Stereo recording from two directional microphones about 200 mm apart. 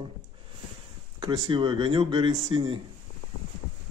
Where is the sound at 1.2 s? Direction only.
25° right (ahead or behind).